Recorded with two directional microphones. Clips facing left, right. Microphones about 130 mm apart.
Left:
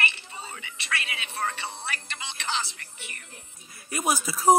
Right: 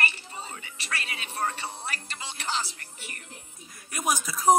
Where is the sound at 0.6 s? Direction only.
40° right (ahead or behind).